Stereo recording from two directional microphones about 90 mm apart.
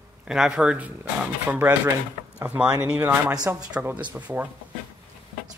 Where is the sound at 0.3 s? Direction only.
10° right (ahead or behind).